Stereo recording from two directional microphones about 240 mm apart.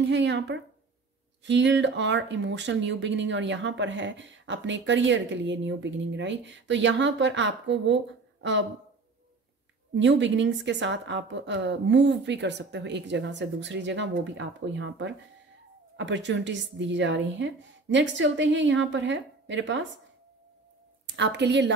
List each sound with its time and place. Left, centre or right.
0.0 s speech: right
9.9 s speech: right
21.2 s speech: right